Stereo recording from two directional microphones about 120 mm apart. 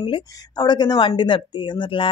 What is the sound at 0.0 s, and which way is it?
Speech, 40° left (ahead or behind).